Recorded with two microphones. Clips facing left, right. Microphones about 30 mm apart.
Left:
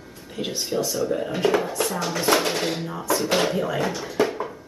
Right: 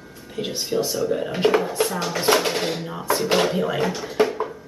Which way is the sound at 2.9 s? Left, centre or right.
Centre.